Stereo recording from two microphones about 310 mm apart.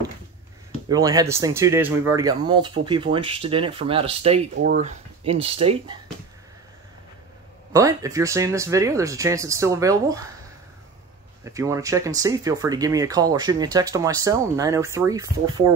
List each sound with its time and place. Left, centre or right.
0.8 s speech: centre
7.7 s speech: centre
11.4 s speech: centre